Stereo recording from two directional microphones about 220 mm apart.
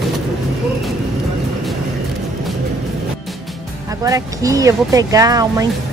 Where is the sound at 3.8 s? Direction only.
15° right (ahead or behind).